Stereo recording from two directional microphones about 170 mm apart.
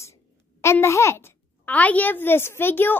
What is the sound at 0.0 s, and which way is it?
A child's voice, 15° left (ahead or behind).